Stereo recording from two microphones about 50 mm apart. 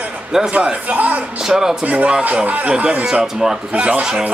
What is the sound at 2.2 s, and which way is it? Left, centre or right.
Speech, right.